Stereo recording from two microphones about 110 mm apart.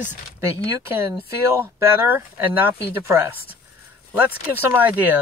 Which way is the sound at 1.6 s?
20° right (ahead or behind).